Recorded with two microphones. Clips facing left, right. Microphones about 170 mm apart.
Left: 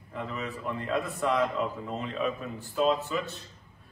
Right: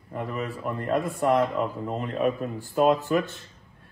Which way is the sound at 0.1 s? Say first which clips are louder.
Right 4 dB; 50° right (ahead or behind).